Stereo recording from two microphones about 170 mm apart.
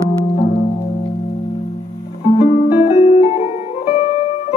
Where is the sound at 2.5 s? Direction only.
40° left (ahead or behind).